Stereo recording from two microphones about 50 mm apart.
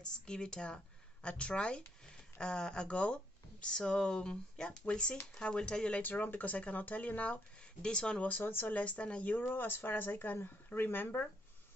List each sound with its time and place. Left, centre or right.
0.0 s speech: centre
6.0 s speech: left
7.8 s speech: centre
8.3 s speech: left
8.7 s speech: left
9.4 s speech: left